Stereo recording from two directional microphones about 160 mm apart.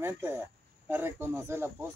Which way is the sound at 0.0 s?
15° right (ahead or behind).